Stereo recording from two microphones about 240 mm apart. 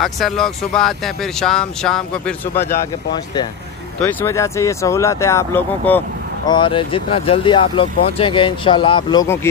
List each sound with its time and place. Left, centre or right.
0.0 s speech: centre
6.5 s speech: left